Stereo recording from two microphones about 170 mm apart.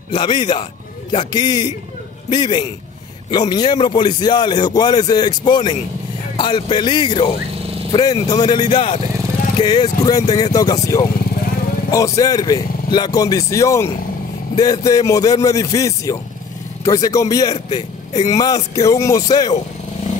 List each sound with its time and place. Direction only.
0.1 s a man's voice: 25° left (ahead or behind)